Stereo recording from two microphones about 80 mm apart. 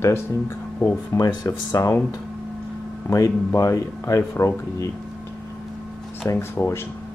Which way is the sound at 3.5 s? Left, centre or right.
Left.